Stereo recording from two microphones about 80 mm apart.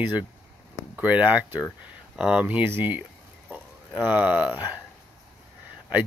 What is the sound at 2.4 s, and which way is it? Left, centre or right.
Speech, right.